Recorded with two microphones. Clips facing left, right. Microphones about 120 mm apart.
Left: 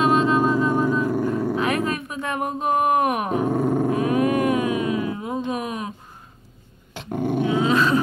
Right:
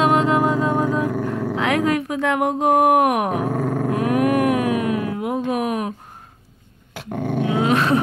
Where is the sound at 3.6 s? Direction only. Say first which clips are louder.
Left 2 dB; 25° left (ahead or behind).